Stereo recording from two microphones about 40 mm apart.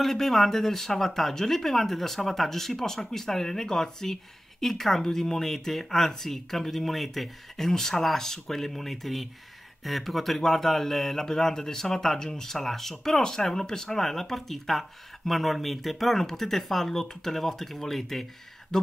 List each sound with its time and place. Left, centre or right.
0.0 s speech: centre
18.7 s speech: centre